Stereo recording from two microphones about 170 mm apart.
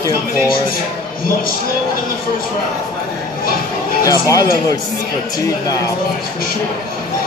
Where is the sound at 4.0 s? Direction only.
20° left (ahead or behind).